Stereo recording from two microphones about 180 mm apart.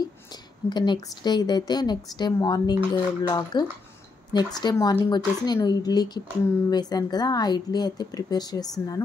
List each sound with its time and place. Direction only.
0.7 s a woman's voice: 25° left (ahead or behind)